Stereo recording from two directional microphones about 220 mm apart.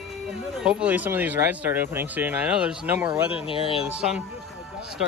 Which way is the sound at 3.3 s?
25° left (ahead or behind).